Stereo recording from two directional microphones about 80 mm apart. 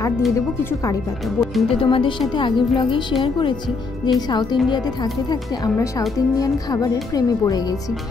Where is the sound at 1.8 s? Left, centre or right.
Left.